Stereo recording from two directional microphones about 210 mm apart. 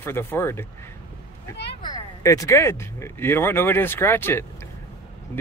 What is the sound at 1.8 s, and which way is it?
Speech, 15° left (ahead or behind).